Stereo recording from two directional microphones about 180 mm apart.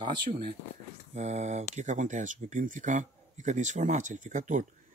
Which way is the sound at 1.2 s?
40° right (ahead or behind).